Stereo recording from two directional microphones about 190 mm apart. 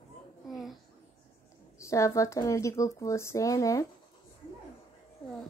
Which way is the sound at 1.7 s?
15° left (ahead or behind).